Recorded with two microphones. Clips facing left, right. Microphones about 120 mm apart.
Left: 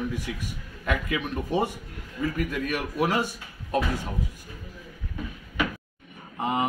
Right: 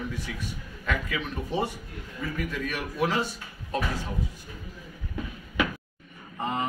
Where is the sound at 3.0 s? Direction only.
10° left (ahead or behind).